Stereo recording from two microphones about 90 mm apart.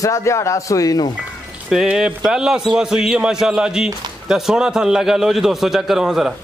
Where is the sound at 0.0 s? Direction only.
35° left (ahead or behind).